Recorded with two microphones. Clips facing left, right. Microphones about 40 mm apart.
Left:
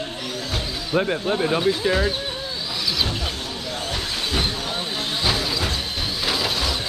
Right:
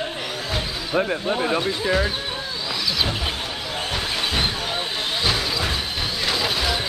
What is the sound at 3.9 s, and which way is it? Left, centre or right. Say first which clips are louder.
Vehicle: right 2 dB; centre.